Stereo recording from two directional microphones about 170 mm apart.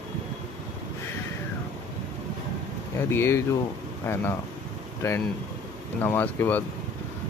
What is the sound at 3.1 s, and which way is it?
Speech, 15° left (ahead or behind).